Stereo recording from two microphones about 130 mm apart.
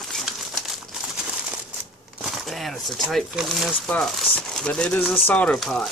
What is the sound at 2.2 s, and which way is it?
Speech, centre (ahead or behind).